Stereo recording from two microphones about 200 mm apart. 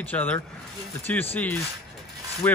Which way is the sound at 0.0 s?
10° left (ahead or behind).